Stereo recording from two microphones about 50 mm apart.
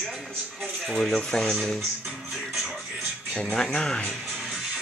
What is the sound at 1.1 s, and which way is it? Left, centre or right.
Speech, centre.